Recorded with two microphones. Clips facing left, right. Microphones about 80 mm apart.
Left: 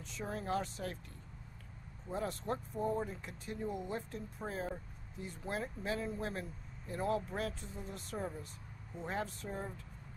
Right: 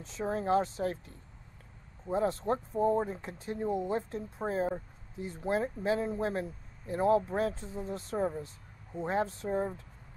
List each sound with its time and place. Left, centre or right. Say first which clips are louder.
0.0 s speech: right 8 dB; right
2.0 s speech: right 8 dB; right